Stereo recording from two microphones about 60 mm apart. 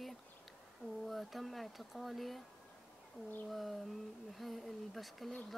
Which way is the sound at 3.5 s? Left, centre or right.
Centre.